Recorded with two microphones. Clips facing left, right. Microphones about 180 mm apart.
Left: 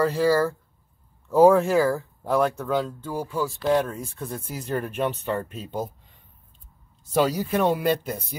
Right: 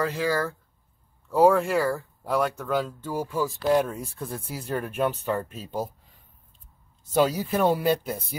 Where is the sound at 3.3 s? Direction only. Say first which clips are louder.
Even; 10° right (ahead or behind).